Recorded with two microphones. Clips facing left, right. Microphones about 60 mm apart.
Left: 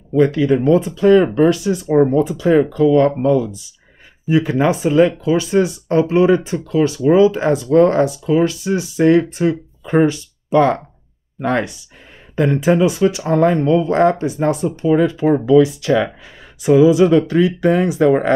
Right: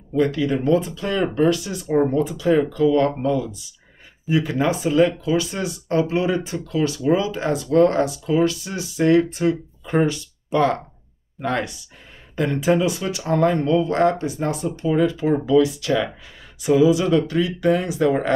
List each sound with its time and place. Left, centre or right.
0.1 s speech: left